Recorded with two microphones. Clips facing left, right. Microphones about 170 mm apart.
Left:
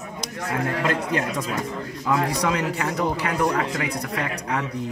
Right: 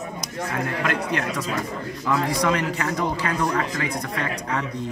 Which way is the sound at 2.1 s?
15° left (ahead or behind).